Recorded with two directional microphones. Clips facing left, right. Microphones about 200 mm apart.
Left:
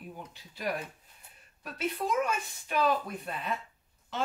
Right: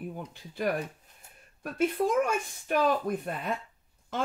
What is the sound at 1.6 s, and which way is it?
Speech, 50° right (ahead or behind).